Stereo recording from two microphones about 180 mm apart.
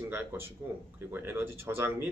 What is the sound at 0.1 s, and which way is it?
Speech, 10° right (ahead or behind).